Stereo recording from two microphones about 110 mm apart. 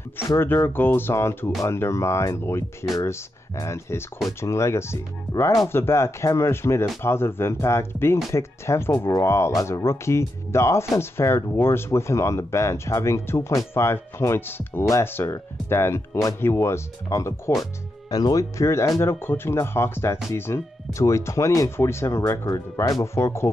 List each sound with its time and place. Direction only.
0.4 s speech: 20° left (ahead or behind)